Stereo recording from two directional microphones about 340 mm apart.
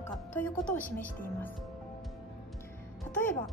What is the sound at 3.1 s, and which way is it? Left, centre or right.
Speech, centre.